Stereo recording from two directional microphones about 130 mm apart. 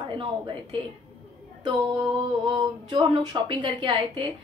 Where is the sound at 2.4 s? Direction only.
40° right (ahead or behind).